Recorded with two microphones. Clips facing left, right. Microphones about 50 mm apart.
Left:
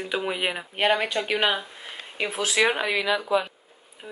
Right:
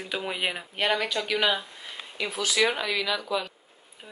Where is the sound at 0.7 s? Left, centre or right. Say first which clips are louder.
Left 4 dB; left.